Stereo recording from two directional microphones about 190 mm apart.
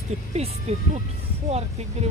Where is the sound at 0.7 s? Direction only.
35° right (ahead or behind).